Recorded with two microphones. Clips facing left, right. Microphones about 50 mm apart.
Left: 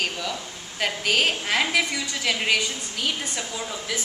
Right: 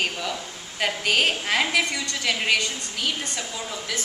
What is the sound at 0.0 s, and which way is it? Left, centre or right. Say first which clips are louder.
A woman's voice: right 1 dB; centre.